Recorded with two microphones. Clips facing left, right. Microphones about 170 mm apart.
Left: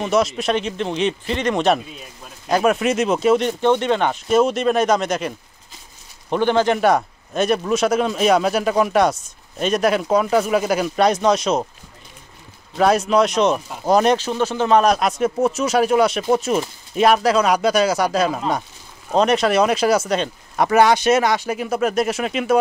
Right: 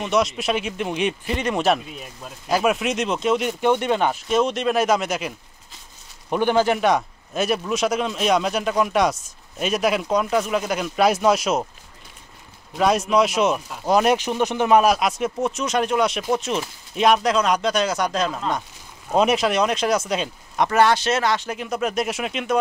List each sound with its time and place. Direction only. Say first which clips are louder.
0.0 s speech: left 3 dB; centre (ahead or behind)
3.4 s speech: left 3 dB; 10° right (ahead or behind)
6.3 s speech: left 2 dB; 10° right (ahead or behind)
12.7 s speech: left 3 dB; centre (ahead or behind)
14.1 s speech: left 1 dB; 15° right (ahead or behind); by 18.6 s 10° left (ahead or behind)
19.1 s speech: left 3 dB; centre (ahead or behind)